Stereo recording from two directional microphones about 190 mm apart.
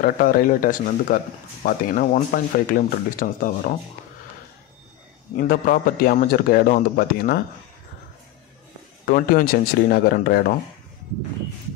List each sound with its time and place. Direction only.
0.0 s speech: 50° left (ahead or behind)
5.3 s speech: 45° left (ahead or behind)
9.0 s speech: 50° left (ahead or behind)